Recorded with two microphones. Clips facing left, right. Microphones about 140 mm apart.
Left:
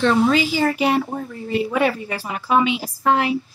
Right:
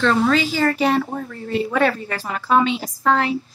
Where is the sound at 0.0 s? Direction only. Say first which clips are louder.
Left 1 dB; 10° left (ahead or behind).